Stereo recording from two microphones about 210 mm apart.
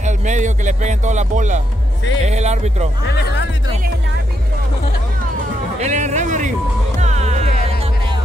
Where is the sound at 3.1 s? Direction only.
55° left (ahead or behind).